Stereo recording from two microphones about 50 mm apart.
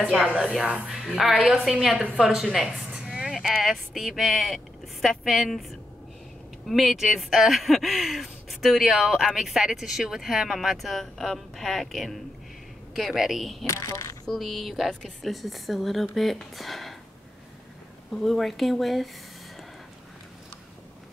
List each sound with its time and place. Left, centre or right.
0.4 s speech: centre
2.5 s a sound: centre
3.4 s speech: centre
10.8 s speech: centre
13.7 s speech: left
14.3 s speech: centre
18.1 s speech: centre